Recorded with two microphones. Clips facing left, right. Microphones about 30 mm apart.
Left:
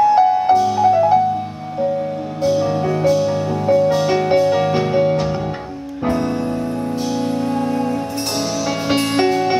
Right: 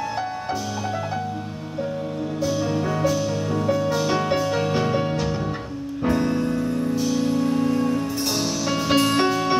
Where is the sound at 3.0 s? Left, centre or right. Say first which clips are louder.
Left 6 dB; left.